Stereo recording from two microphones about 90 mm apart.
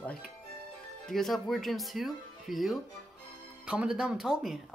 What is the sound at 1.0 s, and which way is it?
Speech, 5° left (ahead or behind).